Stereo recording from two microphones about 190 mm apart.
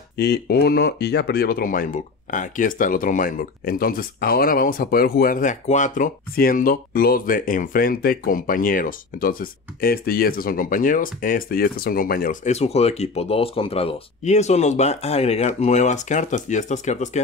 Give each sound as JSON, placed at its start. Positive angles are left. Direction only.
{"t": 0.2, "sound": "speech", "side_deg": 60}